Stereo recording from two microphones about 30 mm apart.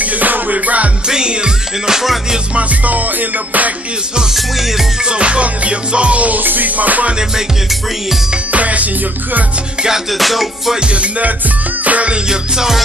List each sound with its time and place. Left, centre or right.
0.0 s music: right
1.0 s music: right
2.8 s music: right
5.1 s music: right
6.2 s music: right
8.5 s music: right
10.1 s music: centre
11.8 s music: right
12.1 s music: right